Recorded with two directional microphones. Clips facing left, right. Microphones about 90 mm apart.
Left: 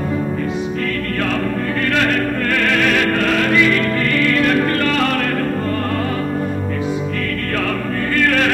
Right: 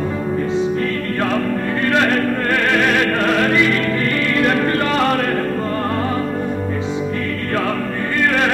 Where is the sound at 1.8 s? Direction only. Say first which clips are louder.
Right 2 dB; 25° right (ahead or behind).